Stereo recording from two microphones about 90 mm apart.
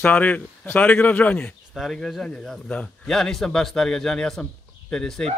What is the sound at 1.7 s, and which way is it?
A man's voice, 5° left (ahead or behind).